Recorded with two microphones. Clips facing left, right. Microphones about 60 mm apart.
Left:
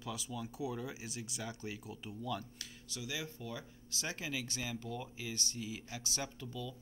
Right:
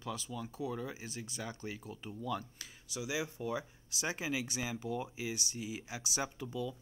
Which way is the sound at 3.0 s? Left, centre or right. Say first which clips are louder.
Right 5 dB; centre.